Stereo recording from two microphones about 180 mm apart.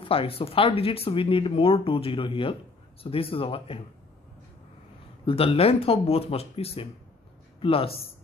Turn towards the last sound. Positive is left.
turn(degrees=30)  # may be behind; listen again after turning